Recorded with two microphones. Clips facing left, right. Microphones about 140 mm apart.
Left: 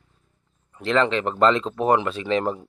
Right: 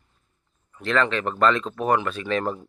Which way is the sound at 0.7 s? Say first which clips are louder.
Left 2 dB; 20° left (ahead or behind).